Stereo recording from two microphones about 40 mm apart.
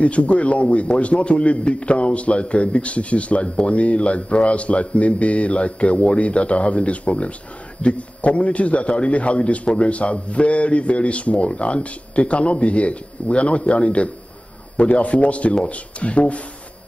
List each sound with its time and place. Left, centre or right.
0.0 s a man's voice: left